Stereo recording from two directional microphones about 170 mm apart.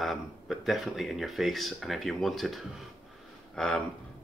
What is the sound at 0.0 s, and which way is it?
Speech, centre (ahead or behind).